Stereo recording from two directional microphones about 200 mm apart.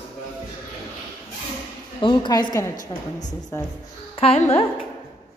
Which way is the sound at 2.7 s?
40° left (ahead or behind).